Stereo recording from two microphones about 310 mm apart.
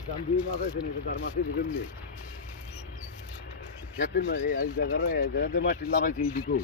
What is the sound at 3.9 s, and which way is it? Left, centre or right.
Speech, left.